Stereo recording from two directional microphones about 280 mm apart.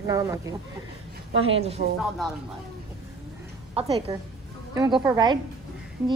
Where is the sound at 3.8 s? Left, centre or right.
Centre.